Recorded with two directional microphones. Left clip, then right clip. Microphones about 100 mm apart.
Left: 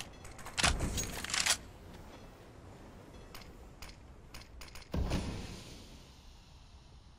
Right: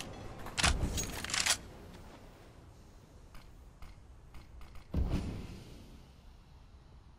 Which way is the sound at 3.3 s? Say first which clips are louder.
Left 7 dB; 90° left.